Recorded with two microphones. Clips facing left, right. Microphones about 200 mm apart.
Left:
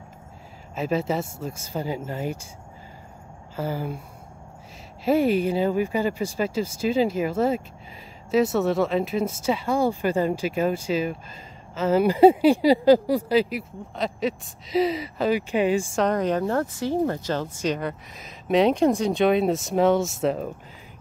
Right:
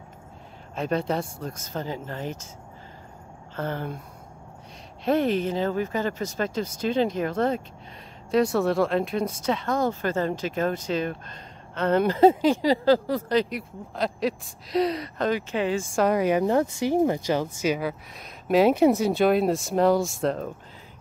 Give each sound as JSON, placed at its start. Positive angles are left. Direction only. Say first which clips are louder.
{"t": 0.7, "sound": "speech", "louder": "left 1 dB", "side_deg": 5}
{"t": 3.5, "sound": "speech", "louder": "left 2 dB", "side_deg": 5}
{"t": 5.0, "sound": "speech", "louder": "left 2 dB", "side_deg": 10}
{"t": 15.9, "sound": "speech", "louder": "right 1 dB", "side_deg": -5}